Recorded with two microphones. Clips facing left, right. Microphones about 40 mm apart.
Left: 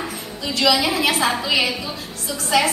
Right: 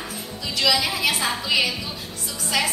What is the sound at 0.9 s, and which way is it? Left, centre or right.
Speech, left.